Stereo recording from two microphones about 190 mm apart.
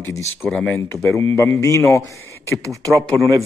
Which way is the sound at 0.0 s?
15° left (ahead or behind).